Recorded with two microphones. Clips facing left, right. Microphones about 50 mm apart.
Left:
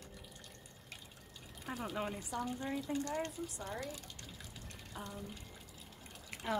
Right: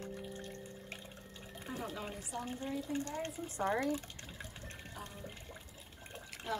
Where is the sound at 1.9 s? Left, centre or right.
Left.